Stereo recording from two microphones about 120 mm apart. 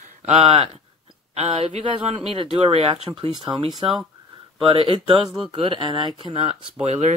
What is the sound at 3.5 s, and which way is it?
Speech, 35° right (ahead or behind).